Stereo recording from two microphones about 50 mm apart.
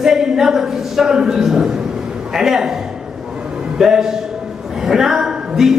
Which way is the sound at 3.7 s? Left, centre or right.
Centre.